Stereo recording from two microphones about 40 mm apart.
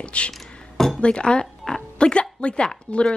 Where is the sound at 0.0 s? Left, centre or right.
Left.